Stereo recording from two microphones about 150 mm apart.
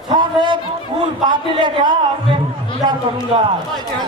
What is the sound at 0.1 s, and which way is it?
A man's voice, 30° right (ahead or behind).